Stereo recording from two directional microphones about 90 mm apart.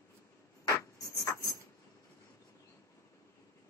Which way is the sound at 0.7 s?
35° left (ahead or behind).